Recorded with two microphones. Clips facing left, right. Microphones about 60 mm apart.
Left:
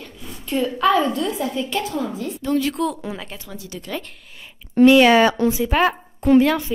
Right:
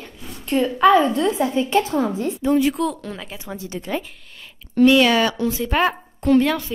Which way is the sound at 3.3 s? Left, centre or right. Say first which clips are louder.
Right 4 dB; right.